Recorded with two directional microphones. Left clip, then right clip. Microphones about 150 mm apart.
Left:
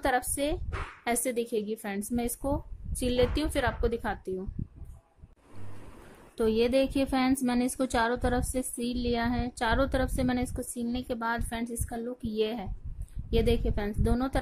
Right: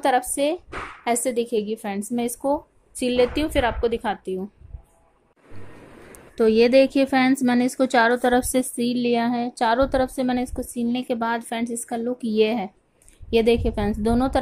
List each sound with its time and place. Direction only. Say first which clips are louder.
0.0 s a woman's voice: right 8 dB; centre (ahead or behind)
6.3 s speech: right 10 dB; 10° right (ahead or behind)
8.4 s speech: right 11 dB; 20° right (ahead or behind)
8.7 s speech: right 6 dB; 10° right (ahead or behind)